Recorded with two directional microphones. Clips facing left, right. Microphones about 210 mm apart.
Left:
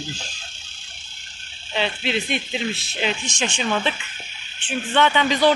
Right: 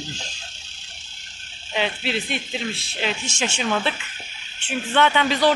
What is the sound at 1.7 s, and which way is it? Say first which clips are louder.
Speech: left 1 dB; 5° right (ahead or behind).